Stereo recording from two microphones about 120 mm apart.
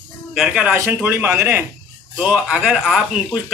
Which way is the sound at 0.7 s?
20° right (ahead or behind).